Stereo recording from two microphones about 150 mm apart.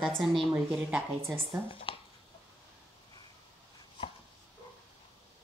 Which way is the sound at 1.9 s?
40° left (ahead or behind).